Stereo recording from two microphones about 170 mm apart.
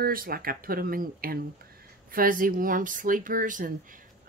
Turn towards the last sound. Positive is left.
turn(degrees=-50)  # may be behind; listen again after turning